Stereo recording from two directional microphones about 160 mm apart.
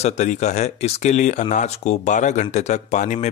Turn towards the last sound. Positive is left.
turn(degrees=50)  # may be behind; listen again after turning